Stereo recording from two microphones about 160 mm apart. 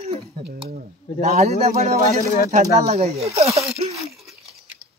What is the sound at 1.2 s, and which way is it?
Speech, 45° right (ahead or behind).